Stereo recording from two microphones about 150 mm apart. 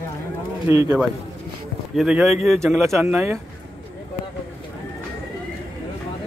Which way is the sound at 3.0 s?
15° right (ahead or behind).